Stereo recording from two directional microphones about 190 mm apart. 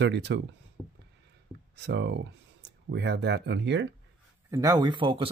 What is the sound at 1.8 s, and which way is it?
Speech, 65° right (ahead or behind).